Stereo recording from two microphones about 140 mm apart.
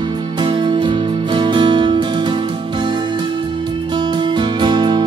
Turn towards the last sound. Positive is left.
turn(degrees=-30)  # may be behind; listen again after turning